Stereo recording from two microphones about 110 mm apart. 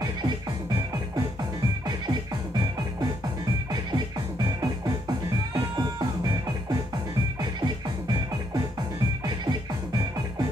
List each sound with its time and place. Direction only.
4.6 s music: 35° right (ahead or behind)
7.6 s music: 35° right (ahead or behind)